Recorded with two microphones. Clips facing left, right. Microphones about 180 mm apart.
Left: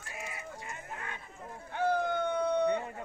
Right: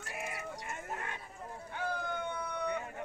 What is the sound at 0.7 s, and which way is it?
Sheep, 45° right (ahead or behind).